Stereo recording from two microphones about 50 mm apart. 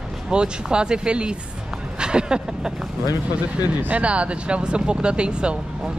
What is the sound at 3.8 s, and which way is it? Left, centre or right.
Speech, right.